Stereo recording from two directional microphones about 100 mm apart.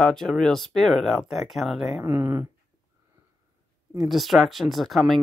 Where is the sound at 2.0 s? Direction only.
25° right (ahead or behind).